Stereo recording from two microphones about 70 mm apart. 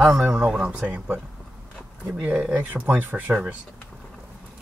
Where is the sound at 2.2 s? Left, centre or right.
Centre.